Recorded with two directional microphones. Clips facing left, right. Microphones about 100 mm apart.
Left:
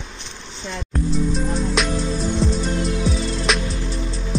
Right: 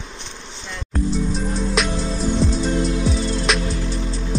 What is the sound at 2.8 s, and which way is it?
Music, 30° right (ahead or behind).